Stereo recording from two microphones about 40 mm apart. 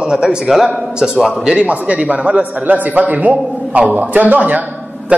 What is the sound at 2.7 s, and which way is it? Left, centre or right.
A man's voice, right.